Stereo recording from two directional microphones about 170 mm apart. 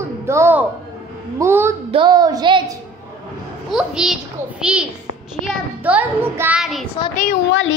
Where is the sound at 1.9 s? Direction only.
25° right (ahead or behind).